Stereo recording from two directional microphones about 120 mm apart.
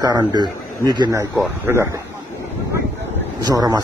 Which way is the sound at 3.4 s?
35° right (ahead or behind).